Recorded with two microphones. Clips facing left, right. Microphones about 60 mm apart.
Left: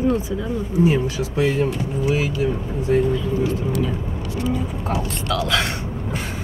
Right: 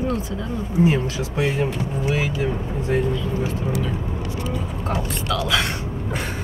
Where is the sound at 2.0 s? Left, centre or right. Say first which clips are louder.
Left 3 dB; right.